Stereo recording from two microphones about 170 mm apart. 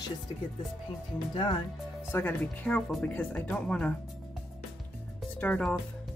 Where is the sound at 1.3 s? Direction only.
25° left (ahead or behind).